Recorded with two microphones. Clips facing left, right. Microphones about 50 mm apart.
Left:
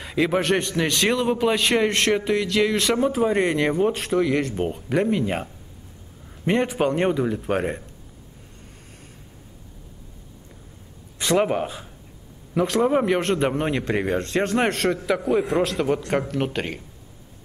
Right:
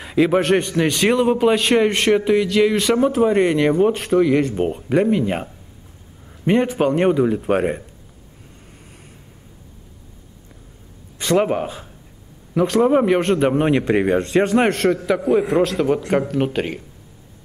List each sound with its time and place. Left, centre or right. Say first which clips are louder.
0.0 s a man's voice: right 5 dB; centre
11.1 s speech: right 3 dB; centre
13.6 s a man's voice: right 7 dB; centre
14.7 s speech: right 4 dB; centre